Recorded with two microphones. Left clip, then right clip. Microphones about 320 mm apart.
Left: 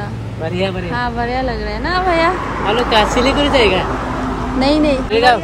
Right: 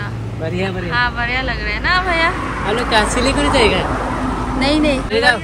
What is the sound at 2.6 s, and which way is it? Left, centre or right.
Speech, left.